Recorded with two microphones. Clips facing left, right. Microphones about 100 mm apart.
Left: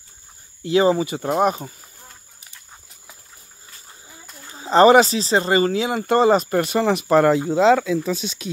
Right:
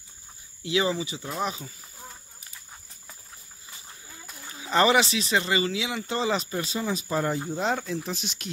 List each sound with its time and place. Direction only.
0.7 s speech: 40° left (ahead or behind)
4.6 s speech: 35° left (ahead or behind); by 7.7 s 90° left